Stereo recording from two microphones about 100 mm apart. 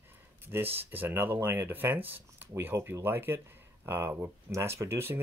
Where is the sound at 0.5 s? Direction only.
20° right (ahead or behind).